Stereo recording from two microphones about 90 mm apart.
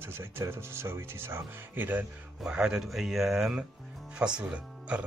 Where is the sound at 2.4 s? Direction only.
10° right (ahead or behind).